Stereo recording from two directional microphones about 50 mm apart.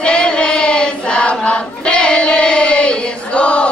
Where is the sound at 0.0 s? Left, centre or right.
Centre.